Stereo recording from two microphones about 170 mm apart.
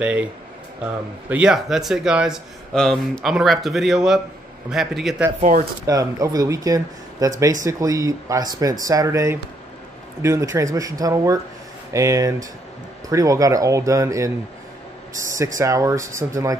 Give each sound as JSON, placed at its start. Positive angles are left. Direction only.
{"t": 0.0, "sound": "speech", "side_deg": -10}
{"t": 1.3, "sound": "speech", "side_deg": -5}
{"t": 5.9, "sound": "speech", "side_deg": -20}